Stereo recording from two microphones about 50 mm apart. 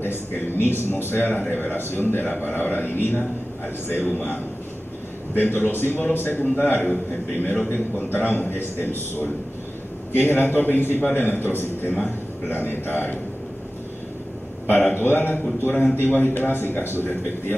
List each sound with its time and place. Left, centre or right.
0.0 s a man's voice: left
6.4 s a man's voice: left
6.7 s a man's voice: left
11.9 s a man's voice: left
12.5 s a man's voice: left
14.7 s a man's voice: left